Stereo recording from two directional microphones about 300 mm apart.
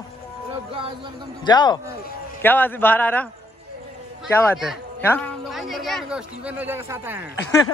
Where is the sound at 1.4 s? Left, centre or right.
Centre.